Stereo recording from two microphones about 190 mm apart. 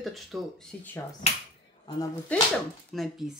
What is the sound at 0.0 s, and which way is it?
Speech, centre (ahead or behind).